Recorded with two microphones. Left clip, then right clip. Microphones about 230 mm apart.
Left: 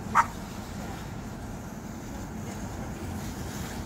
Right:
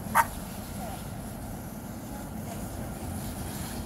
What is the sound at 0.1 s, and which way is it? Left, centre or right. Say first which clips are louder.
Vehicle: left 1 dB; right.